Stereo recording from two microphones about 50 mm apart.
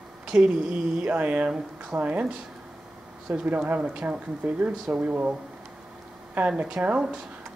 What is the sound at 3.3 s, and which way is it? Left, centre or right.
Speech, right.